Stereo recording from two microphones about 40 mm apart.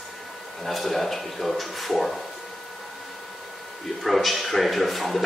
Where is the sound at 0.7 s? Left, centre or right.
Centre.